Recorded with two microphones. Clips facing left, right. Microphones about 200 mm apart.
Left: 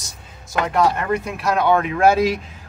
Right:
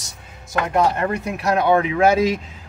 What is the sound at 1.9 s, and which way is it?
Speech, 20° right (ahead or behind).